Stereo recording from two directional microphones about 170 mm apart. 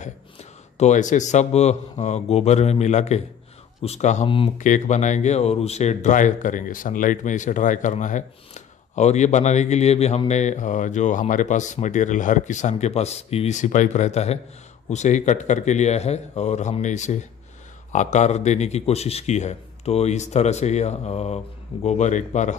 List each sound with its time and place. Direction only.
0.0 s a man's voice: 40° left (ahead or behind)